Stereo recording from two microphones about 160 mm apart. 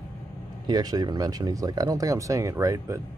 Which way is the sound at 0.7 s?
25° right (ahead or behind).